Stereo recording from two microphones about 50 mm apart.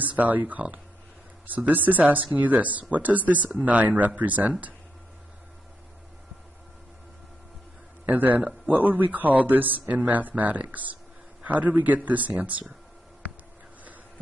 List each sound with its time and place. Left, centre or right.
0.0 s speech: right
8.1 s speech: right